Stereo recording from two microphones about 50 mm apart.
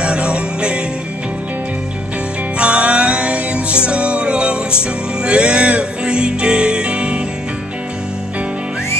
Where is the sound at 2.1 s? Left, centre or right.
Right.